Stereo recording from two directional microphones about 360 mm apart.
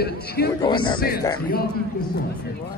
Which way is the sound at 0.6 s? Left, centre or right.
Centre.